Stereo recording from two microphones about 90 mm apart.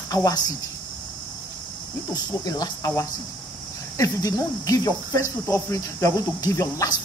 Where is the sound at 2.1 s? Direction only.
45° left (ahead or behind).